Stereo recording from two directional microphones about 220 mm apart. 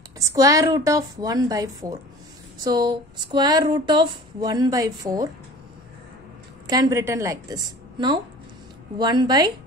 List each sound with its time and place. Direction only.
0.3 s a woman's voice: 15° right (ahead or behind)
6.7 s a woman's voice: 15° right (ahead or behind)